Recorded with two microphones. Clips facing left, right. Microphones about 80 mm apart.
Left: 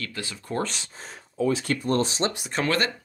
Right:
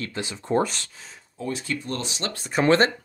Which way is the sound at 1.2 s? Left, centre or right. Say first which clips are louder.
Left 7 dB; left.